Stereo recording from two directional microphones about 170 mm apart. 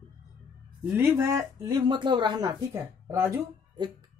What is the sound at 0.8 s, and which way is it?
Speech, 10° right (ahead or behind).